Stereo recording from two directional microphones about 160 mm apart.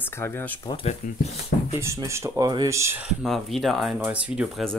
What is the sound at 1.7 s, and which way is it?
Speech, 15° right (ahead or behind).